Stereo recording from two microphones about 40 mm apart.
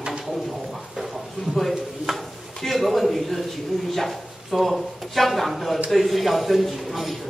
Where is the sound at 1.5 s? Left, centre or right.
Centre.